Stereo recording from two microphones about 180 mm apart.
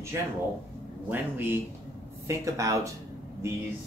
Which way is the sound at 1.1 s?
10° right (ahead or behind).